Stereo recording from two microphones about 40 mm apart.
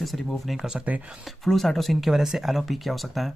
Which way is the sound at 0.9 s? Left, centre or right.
Right.